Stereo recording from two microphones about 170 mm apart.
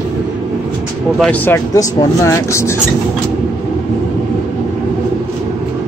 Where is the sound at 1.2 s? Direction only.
10° left (ahead or behind).